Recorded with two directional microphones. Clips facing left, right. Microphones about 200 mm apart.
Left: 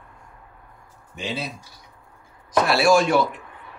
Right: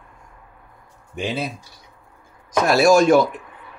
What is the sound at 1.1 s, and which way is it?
Speech, 55° right (ahead or behind).